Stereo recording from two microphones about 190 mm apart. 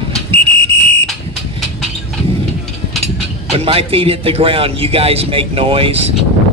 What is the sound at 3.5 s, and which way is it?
A man's voice, 30° right (ahead or behind).